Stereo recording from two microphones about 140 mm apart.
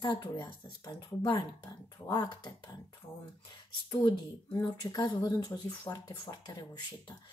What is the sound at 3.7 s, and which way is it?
A woman's voice, 30° left (ahead or behind).